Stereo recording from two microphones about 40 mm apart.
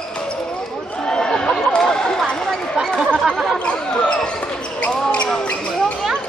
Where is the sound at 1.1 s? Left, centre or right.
Left.